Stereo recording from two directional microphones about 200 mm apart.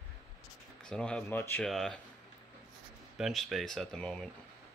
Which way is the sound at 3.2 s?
Centre (ahead or behind).